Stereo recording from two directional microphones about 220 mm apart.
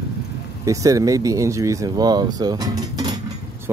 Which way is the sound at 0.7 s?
15° right (ahead or behind).